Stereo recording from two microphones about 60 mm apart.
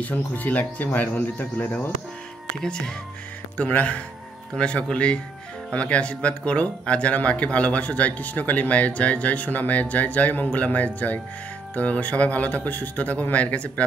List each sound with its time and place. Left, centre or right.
0.0 s speech: left
3.5 s speech: left